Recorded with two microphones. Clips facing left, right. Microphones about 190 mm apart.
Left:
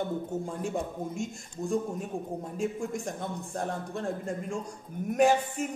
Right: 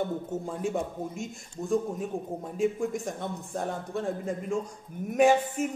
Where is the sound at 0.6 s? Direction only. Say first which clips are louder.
Right 2 dB; centre (ahead or behind).